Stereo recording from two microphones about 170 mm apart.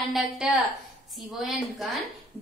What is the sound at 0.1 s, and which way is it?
A woman's voice, centre (ahead or behind).